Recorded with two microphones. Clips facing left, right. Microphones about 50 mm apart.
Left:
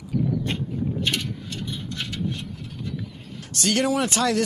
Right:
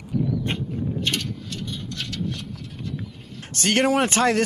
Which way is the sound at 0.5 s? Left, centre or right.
Right.